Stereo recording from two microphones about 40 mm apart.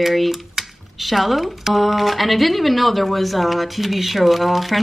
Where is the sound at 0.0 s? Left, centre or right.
Centre.